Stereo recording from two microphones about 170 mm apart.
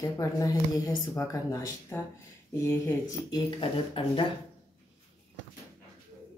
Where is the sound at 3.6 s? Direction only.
30° left (ahead or behind).